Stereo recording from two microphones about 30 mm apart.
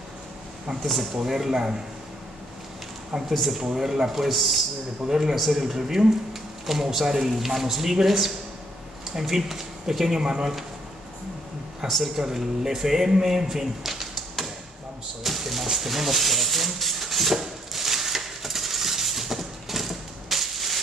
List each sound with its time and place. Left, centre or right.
1.1 s speech: centre
1.5 s a man's voice: right
3.3 s speech: centre
3.7 s speech: centre
5.0 s a man's voice: centre
5.3 s speech: centre
11.8 s speech: centre
15.2 s a sound: centre